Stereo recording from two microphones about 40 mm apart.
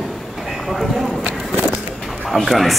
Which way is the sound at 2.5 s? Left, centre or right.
Centre.